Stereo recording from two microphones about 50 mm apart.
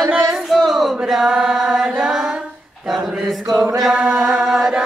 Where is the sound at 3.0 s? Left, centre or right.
Centre.